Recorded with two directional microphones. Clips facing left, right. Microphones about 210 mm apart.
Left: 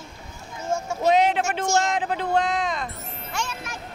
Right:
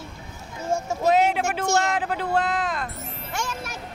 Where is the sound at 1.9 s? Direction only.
5° right (ahead or behind).